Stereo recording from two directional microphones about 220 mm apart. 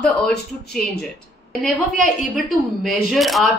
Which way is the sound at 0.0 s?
5° left (ahead or behind).